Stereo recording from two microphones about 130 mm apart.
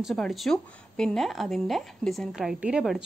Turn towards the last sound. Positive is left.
turn(degrees=-5)  # may be behind; listen again after turning